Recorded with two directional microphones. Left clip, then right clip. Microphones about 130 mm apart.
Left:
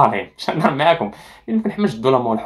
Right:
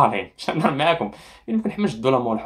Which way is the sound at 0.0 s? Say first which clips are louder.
Left 3 dB; 10° right (ahead or behind).